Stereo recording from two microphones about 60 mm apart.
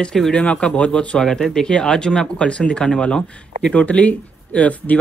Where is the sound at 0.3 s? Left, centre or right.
Centre.